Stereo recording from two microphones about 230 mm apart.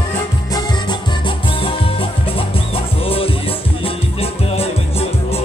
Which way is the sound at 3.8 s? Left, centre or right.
Left.